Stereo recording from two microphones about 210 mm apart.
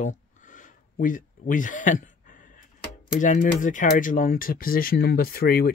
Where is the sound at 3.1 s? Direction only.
40° left (ahead or behind).